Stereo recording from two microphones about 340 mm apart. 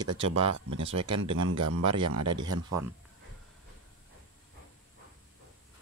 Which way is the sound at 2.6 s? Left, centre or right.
Centre.